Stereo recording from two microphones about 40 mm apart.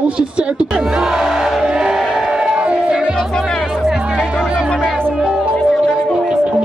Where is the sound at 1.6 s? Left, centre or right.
Centre.